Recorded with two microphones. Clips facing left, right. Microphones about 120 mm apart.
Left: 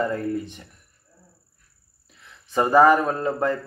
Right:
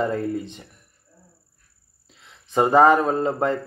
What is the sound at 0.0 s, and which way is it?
Speech, 20° right (ahead or behind).